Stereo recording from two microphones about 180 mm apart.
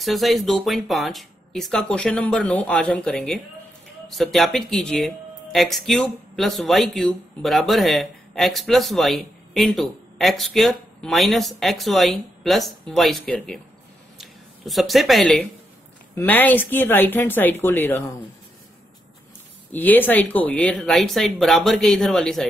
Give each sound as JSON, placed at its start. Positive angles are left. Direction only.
{"t": 0.0, "sound": "speech", "side_deg": 0}
{"t": 14.1, "sound": "a sound", "side_deg": 0}
{"t": 16.2, "sound": "speech", "side_deg": 10}
{"t": 19.7, "sound": "speech", "side_deg": 10}